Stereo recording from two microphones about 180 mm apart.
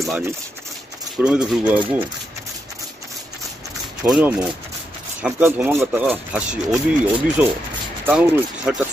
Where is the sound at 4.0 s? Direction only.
10° right (ahead or behind).